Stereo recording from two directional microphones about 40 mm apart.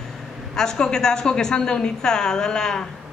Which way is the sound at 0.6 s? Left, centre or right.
Centre.